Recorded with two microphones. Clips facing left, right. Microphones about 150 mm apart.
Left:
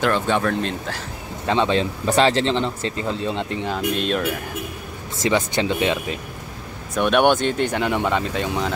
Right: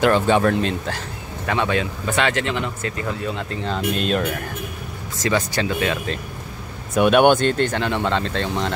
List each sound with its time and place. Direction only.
0.0 s speech: 10° right (ahead or behind)
1.4 s speech: 25° left (ahead or behind)
3.8 s speech: centre (ahead or behind)
5.2 s speech: 20° left (ahead or behind)
7.0 s speech: 5° right (ahead or behind)